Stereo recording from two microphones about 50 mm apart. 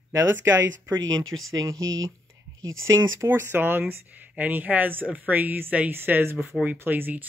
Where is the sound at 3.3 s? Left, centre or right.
Right.